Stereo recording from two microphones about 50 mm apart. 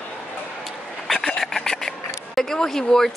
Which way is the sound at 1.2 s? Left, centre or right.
Centre.